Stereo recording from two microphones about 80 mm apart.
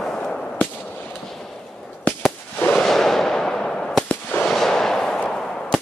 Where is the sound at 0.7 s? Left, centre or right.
Left.